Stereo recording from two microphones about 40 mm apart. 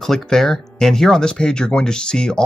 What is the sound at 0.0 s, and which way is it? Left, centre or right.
Speech, centre.